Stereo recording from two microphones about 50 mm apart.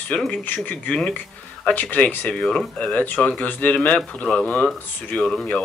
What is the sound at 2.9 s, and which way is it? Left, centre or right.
Speech, left.